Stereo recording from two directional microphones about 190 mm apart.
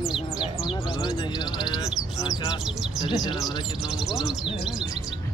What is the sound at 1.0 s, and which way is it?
Speech, 20° left (ahead or behind).